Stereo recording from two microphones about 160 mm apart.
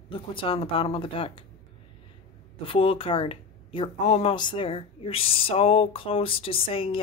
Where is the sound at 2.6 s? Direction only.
35° left (ahead or behind).